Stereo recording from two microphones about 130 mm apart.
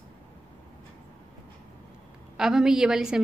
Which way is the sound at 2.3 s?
5° right (ahead or behind).